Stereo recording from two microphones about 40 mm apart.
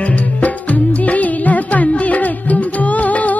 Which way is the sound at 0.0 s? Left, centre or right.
Left.